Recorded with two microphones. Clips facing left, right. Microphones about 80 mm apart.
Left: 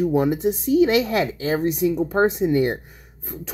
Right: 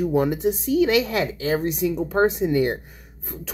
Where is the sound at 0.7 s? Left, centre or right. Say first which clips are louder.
Left 3 dB; left.